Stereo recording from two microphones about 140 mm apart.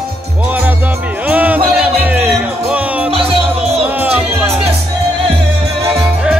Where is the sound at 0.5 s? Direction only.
10° right (ahead or behind).